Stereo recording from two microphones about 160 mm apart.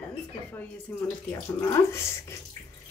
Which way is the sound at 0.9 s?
10° left (ahead or behind).